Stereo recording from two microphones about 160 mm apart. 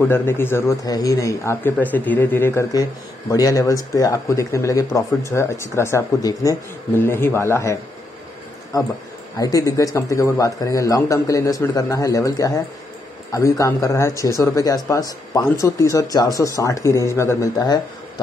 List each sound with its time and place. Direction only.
0.0 s a man's voice: 15° left (ahead or behind)